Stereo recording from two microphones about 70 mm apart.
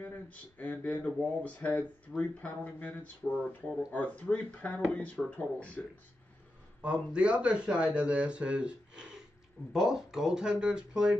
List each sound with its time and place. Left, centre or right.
0.0 s speech: left
6.8 s speech: centre